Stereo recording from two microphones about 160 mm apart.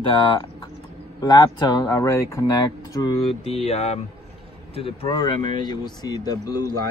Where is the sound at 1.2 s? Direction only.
25° left (ahead or behind).